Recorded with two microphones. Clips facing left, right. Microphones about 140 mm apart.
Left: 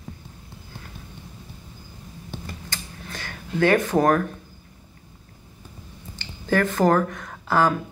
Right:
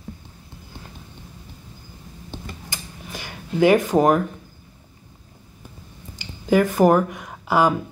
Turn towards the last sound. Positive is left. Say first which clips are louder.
# right 2 dB
turn(degrees=-15)  # may be behind; listen again after turning